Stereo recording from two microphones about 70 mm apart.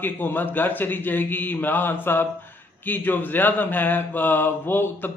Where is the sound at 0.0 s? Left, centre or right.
Left.